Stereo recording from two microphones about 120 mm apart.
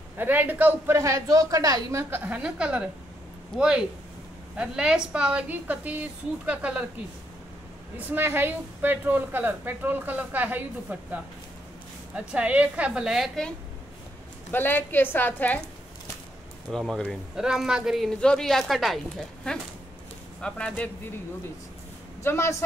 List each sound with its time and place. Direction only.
0.2 s a woman's voice: 15° right (ahead or behind)
8.1 s a woman's voice: 15° right (ahead or behind)
12.2 s a woman's voice: 10° right (ahead or behind)
14.5 s a woman's voice: 15° left (ahead or behind)
16.7 s a woman's voice: 5° left (ahead or behind)
22.2 s a woman's voice: 20° left (ahead or behind)